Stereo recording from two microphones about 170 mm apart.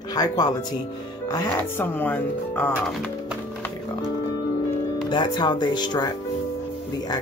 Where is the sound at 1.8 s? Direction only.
10° left (ahead or behind).